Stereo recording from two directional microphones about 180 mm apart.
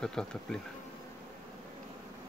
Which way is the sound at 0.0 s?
5° left (ahead or behind).